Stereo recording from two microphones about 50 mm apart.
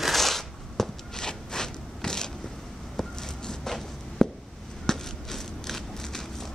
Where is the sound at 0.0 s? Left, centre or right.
Centre.